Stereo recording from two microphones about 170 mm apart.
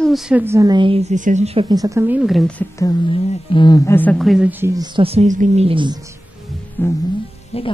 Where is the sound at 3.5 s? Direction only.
25° left (ahead or behind); by 5.6 s 45° right (ahead or behind).